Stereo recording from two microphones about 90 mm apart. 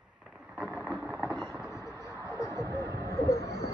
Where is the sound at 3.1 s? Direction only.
35° left (ahead or behind).